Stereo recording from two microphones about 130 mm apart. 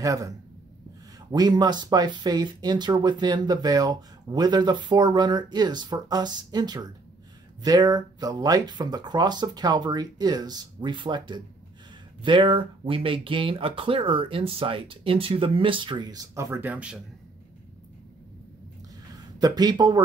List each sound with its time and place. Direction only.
0.0 s speech: 25° right (ahead or behind)
1.3 s speech: 30° right (ahead or behind); by 17.0 s 10° right (ahead or behind)
19.1 s speech: 30° right (ahead or behind)